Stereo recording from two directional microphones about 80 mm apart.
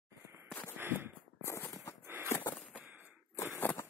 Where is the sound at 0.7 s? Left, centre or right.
Right.